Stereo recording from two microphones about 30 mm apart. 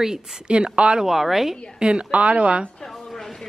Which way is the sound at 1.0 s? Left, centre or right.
Centre.